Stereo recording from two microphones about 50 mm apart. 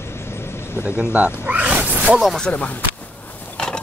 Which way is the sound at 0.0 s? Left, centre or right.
Left.